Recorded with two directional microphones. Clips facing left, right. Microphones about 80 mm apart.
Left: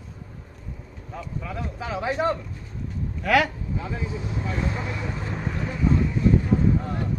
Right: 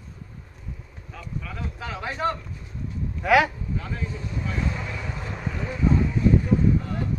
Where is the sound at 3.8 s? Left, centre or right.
Centre.